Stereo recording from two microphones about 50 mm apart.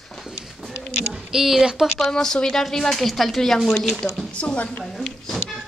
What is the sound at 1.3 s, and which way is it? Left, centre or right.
Speech, centre.